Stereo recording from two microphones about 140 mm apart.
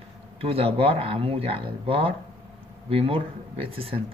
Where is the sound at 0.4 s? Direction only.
45° right (ahead or behind).